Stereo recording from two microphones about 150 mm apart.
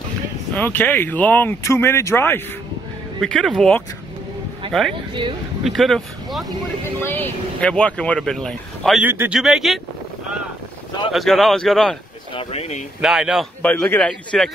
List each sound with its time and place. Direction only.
0.6 s speech: 10° left (ahead or behind)
3.2 s speech: centre (ahead or behind)
5.6 s speech: centre (ahead or behind)
7.0 s speech: 15° left (ahead or behind)
9.0 s speech: 15° right (ahead or behind)
9.4 s speech: centre (ahead or behind)
11.1 s speech: centre (ahead or behind)
12.4 s speech: 45° left (ahead or behind)
13.0 s speech: 5° right (ahead or behind)
13.6 s speech: 10° left (ahead or behind)